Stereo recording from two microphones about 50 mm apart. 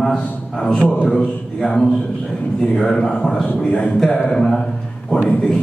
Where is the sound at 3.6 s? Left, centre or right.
Left.